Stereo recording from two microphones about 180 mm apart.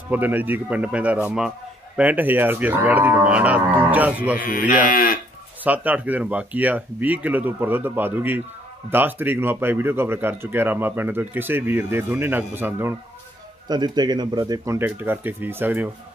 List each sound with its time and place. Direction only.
0.1 s speech: 10° right (ahead or behind)
4.5 s speech: 50° left (ahead or behind)
5.6 s speech: 10° right (ahead or behind)
13.7 s speech: 25° right (ahead or behind)